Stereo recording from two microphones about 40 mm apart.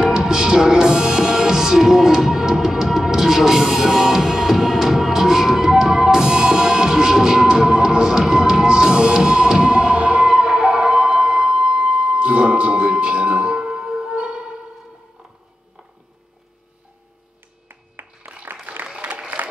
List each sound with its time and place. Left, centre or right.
0.0 s music: centre
18.5 s applause: right